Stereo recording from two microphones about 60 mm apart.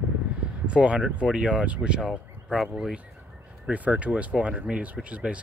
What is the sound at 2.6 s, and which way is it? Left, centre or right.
Speech, centre.